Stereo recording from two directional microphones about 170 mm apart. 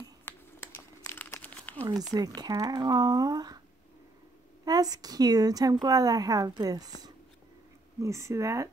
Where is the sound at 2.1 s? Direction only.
25° right (ahead or behind).